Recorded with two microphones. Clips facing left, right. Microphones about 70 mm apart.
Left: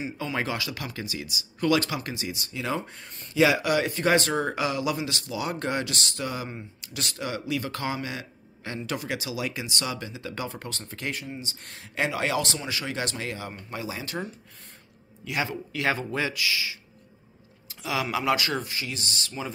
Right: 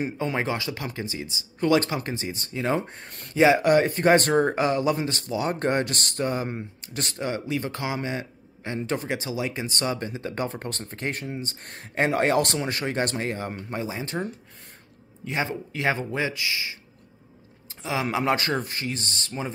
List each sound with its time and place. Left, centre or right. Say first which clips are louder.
0.4 s speech: right 2 dB; right
3.1 s speech: right 3 dB; right
3.3 s speech: right 4 dB; right
13.7 s speech: right 3 dB; right
15.2 s speech: right 2 dB; right
17.6 s a sound: right 1 dB; right
18.1 s speech: right 2 dB; right